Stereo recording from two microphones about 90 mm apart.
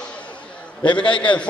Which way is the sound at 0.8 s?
60° left (ahead or behind).